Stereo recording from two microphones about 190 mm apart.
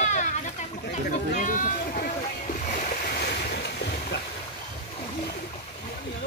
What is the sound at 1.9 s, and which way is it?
Waves, 45° left (ahead or behind).